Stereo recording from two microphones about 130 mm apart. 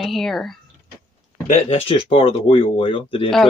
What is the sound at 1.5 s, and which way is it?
Speech, 50° left (ahead or behind).